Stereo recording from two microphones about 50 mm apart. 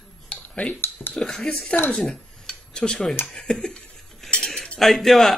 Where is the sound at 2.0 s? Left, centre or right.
Centre.